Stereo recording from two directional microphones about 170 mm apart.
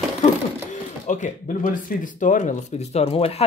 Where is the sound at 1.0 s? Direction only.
45° left (ahead or behind).